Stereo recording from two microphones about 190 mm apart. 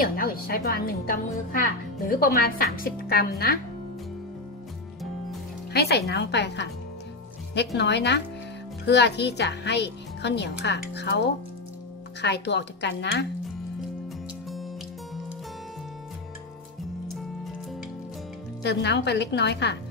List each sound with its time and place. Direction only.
0.0 s a woman's voice: 50° left (ahead or behind)
5.7 s a woman's voice: 55° left (ahead or behind)
18.6 s a woman's voice: 60° left (ahead or behind)